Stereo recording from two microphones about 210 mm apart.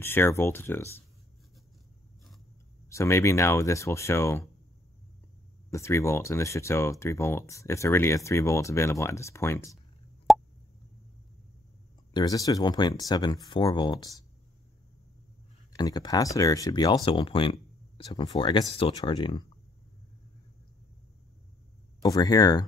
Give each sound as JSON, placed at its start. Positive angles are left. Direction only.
{"t": 0.0, "sound": "speech", "side_deg": 10}
{"t": 2.9, "sound": "speech", "side_deg": 15}
{"t": 5.7, "sound": "speech", "side_deg": 15}
{"t": 10.3, "sound": "plop", "side_deg": 0}
{"t": 12.1, "sound": "speech", "side_deg": 20}
{"t": 15.7, "sound": "speech", "side_deg": 20}
{"t": 22.0, "sound": "speech", "side_deg": 20}